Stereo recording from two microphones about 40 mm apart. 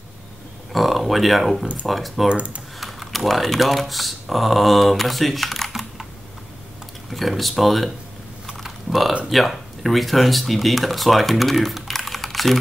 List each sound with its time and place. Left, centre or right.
0.7 s speech: centre
2.2 s speech: right
2.8 s speech: centre
7.1 s speech: centre
8.5 s typing: centre
9.3 s speech: centre